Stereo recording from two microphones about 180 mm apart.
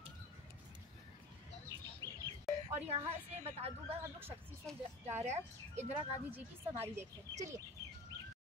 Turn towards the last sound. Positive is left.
turn(degrees=-15)  # may be behind; listen again after turning